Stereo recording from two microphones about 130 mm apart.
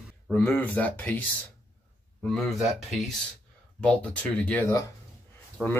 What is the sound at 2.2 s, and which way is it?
Speech, centre (ahead or behind).